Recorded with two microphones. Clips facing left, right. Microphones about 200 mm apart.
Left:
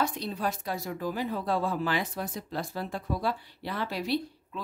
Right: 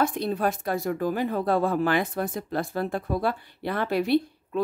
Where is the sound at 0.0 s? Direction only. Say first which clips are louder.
Right 6 dB; 55° right (ahead or behind).